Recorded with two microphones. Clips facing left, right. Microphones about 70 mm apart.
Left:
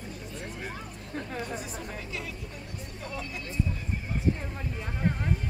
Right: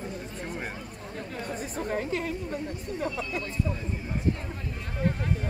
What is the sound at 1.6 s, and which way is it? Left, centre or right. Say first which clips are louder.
Speech: right 7 dB; right.